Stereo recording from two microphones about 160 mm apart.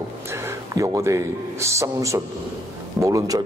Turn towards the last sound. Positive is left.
turn(degrees=-20)  # may be behind; listen again after turning